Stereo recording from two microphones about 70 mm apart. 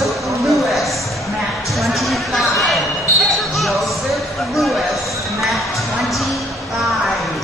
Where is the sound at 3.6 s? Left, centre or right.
Centre.